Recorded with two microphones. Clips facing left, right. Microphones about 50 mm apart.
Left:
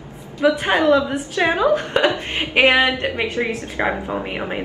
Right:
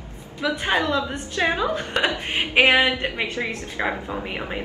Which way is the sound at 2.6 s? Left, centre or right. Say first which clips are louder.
Left 3 dB; left.